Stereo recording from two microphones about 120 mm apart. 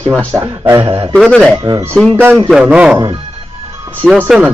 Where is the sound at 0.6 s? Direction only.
35° right (ahead or behind).